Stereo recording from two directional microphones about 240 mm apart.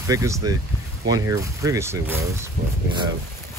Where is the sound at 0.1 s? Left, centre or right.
Centre.